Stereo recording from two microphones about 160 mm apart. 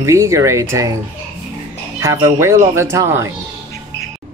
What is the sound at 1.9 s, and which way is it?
Speech, 20° right (ahead or behind).